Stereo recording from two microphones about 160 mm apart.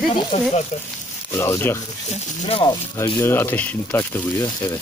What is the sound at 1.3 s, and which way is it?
Speech, 15° left (ahead or behind).